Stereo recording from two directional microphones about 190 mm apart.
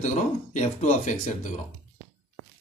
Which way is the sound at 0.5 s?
40° left (ahead or behind).